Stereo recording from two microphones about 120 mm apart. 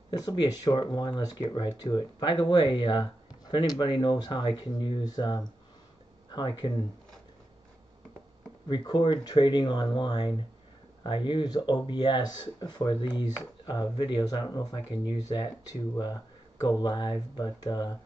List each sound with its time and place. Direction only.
0.1 s speech: 35° left (ahead or behind)
8.6 s speech: 40° left (ahead or behind)
13.1 s speech: 20° right (ahead or behind)
13.7 s speech: 35° left (ahead or behind)